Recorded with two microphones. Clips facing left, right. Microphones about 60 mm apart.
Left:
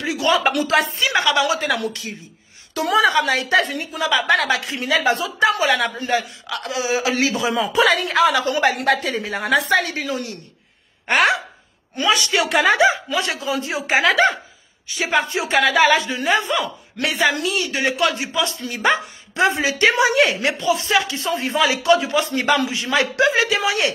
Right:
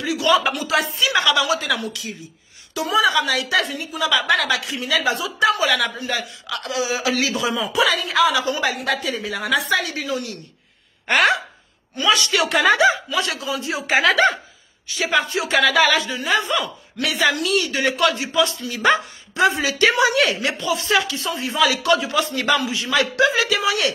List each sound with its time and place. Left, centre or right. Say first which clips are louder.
0.0 s a sound: right 1 dB; left
0.7 s a man's voice: left 2 dB; left
2.8 s a woman's voice: left 2 dB; left
3.1 s a man's voice: left 2 dB; left
4.0 s a man's voice: left 1 dB; left
5.4 s a man's voice: even; left
7.5 s a man's voice: left 4 dB; left
15.0 s speech: even; left
18.1 s speech: right 2 dB; left
21.8 s speech: left 2 dB; left